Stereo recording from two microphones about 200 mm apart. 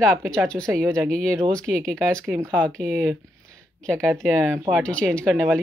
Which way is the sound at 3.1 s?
15° right (ahead or behind).